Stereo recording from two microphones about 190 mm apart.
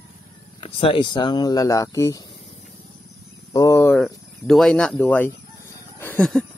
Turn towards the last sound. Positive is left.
turn(degrees=10)  # may be behind; listen again after turning